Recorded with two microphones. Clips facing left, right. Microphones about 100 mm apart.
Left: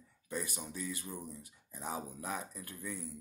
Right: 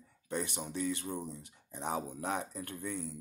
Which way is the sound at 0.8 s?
5° left (ahead or behind).